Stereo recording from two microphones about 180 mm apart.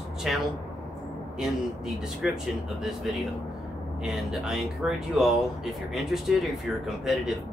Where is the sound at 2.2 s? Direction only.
5° right (ahead or behind).